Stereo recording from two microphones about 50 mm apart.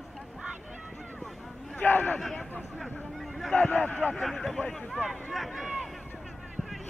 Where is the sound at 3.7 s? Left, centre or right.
Left.